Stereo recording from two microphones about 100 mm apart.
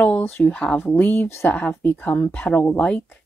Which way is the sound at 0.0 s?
20° left (ahead or behind).